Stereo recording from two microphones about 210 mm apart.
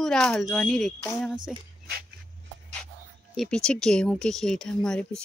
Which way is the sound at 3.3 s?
Centre (ahead or behind).